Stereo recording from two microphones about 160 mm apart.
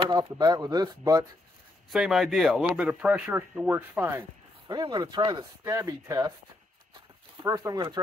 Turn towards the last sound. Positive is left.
turn(degrees=-25)  # may be behind; listen again after turning